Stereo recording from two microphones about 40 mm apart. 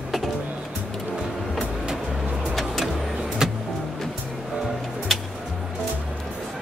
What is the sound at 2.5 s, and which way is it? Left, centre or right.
Vehicle, centre.